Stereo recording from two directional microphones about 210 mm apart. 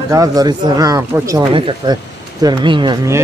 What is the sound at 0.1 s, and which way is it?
A man's voice, 15° right (ahead or behind).